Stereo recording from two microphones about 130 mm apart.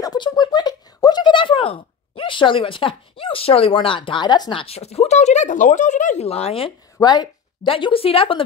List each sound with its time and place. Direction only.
0.0 s speech: 30° left (ahead or behind); by 6.7 s 50° left (ahead or behind)
7.0 s speech: 30° left (ahead or behind)